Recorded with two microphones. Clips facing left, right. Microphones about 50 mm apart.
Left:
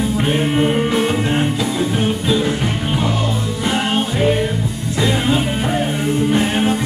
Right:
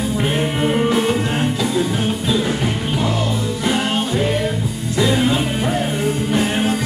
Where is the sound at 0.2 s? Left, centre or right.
Centre.